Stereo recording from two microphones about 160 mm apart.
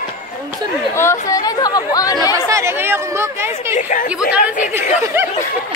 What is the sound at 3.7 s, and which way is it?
Speech, 55° left (ahead or behind).